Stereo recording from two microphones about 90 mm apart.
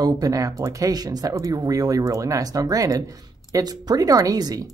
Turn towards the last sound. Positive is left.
turn(degrees=-45)  # may be behind; listen again after turning